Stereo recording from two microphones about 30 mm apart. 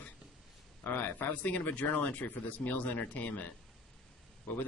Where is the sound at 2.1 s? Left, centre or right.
Left.